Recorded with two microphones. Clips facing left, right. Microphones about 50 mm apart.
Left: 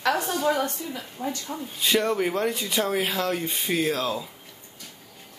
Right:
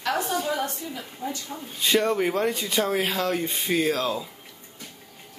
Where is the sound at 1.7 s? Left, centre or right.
Centre.